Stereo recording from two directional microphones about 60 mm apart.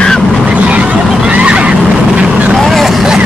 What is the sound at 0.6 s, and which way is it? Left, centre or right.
Vehicle, right.